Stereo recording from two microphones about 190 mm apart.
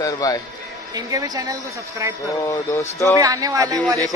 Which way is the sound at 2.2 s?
15° left (ahead or behind).